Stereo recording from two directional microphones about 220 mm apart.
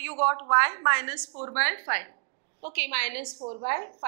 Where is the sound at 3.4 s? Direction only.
30° right (ahead or behind).